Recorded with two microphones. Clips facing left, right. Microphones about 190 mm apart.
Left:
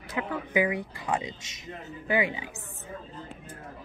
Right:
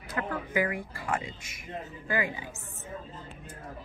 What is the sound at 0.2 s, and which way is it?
Speech, 10° left (ahead or behind).